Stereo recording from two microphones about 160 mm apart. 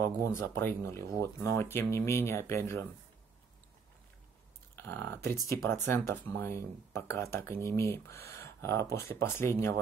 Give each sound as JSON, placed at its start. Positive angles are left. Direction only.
{"t": 0.2, "sound": "speech", "side_deg": 15}
{"t": 4.7, "sound": "speech", "side_deg": 15}